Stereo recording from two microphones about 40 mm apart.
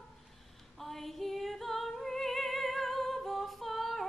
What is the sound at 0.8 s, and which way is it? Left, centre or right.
Female singing, centre.